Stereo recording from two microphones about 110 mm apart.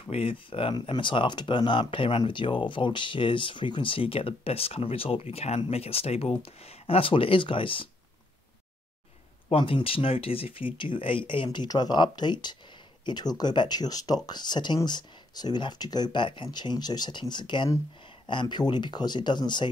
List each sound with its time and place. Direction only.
0.0 s speech: 55° left (ahead or behind)
9.5 s speech: 55° left (ahead or behind)